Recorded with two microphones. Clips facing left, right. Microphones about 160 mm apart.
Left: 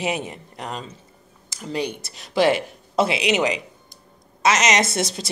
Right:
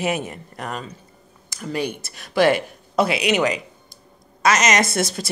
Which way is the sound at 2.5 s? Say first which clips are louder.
Right 1 dB; 25° left (ahead or behind).